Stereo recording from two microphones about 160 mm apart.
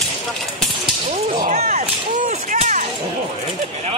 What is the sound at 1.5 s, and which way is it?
Speech, 45° right (ahead or behind).